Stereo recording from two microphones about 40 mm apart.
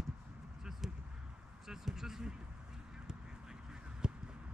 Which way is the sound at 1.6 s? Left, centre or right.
Centre.